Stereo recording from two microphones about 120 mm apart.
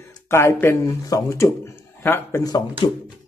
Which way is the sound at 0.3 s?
20° left (ahead or behind).